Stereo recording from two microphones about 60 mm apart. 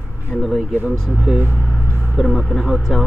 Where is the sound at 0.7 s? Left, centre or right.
Right.